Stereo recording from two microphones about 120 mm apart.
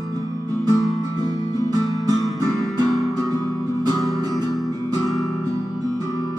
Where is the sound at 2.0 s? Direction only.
30° right (ahead or behind).